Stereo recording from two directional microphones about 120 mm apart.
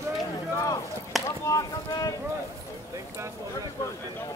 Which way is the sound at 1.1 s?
Centre (ahead or behind).